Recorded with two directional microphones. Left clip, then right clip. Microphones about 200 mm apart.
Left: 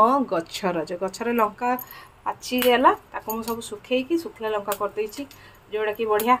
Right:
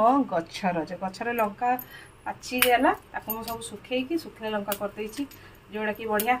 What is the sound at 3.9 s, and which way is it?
Speech, 60° left (ahead or behind).